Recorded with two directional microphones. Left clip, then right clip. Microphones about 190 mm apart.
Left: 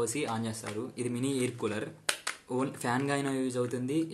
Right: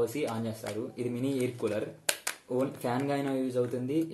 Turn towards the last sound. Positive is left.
turn(degrees=25)  # may be behind; listen again after turning